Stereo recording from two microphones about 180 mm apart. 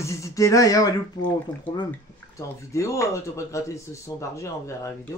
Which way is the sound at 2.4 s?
15° left (ahead or behind).